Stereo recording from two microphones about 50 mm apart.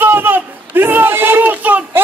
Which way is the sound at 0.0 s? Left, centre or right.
Right.